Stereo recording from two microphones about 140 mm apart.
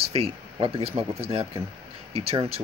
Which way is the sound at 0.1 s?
45° right (ahead or behind).